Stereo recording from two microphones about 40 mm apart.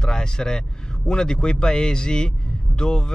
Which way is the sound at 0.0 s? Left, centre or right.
Centre.